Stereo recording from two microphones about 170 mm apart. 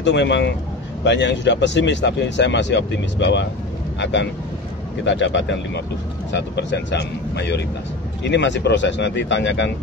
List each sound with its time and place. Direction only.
0.0 s speech: 90° left